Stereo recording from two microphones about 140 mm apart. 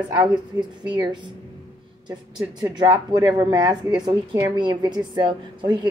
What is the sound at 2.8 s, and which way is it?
A woman's voice, 30° right (ahead or behind).